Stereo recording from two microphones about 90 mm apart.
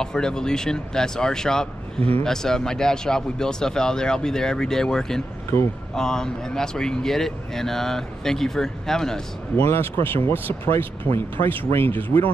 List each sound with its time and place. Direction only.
0.0 s speech: 5° left (ahead or behind)
2.0 s a man's voice: 90° right
2.2 s speech: 5° left (ahead or behind)
9.6 s speech: 25° left (ahead or behind)